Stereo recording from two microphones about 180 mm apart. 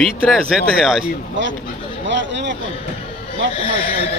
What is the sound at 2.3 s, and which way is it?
Speech, 85° right.